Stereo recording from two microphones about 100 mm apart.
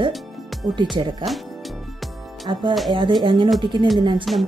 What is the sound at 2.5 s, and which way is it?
Speech, 55° right (ahead or behind).